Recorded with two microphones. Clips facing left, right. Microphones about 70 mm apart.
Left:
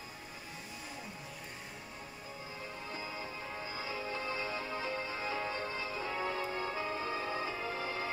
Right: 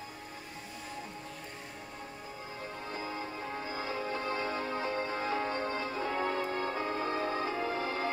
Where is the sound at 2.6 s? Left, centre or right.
Right.